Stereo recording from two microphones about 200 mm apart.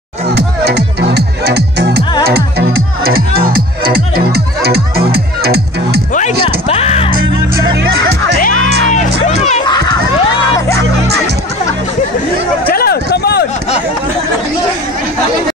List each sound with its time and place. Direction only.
0.3 s music: 55° right (ahead or behind)
6.4 s a sound: 30° left (ahead or behind)
7.7 s music: 55° right (ahead or behind)
9.3 s music: 35° left (ahead or behind)
9.7 s crowd: 20° left (ahead or behind)
12.6 s a sound: 50° left (ahead or behind)